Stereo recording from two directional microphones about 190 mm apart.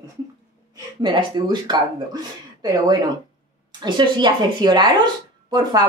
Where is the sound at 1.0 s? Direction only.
25° right (ahead or behind).